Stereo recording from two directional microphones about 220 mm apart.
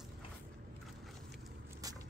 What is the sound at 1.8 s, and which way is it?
Walk, 15° right (ahead or behind).